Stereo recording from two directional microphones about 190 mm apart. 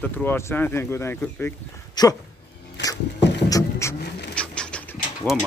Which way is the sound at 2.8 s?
65° left (ahead or behind).